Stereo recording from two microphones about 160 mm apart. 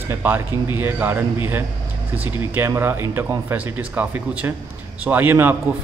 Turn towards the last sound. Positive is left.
turn(degrees=-15)  # may be behind; listen again after turning